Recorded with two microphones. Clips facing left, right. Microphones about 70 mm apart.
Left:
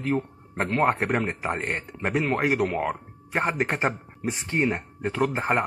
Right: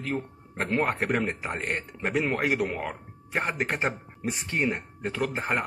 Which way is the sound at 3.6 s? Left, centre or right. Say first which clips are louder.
Left 3 dB; centre.